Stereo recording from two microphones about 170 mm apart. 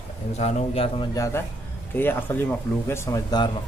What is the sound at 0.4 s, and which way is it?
Speech, 40° left (ahead or behind).